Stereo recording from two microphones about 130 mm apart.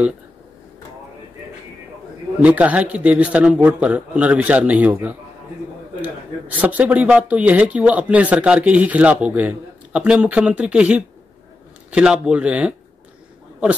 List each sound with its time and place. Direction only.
2.4 s speech: 10° right (ahead or behind)